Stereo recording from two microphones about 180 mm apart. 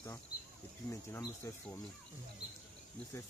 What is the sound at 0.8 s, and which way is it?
Speech, 15° left (ahead or behind).